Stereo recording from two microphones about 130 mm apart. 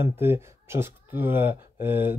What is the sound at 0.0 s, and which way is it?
Speech, 20° right (ahead or behind).